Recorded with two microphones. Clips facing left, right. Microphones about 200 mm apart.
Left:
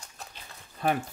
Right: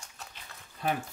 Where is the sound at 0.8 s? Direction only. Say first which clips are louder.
Left 4 dB; 55° left (ahead or behind).